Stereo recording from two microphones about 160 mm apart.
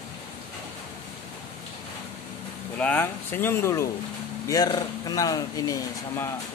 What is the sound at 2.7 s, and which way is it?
Speech, 10° left (ahead or behind).